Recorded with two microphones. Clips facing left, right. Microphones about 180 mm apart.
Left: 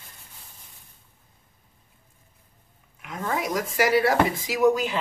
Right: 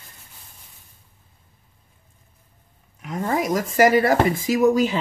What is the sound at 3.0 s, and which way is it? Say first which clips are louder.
Speech: right 5 dB; 45° right (ahead or behind).